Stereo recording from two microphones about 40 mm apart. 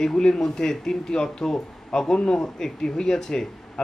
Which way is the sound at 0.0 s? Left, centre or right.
Centre.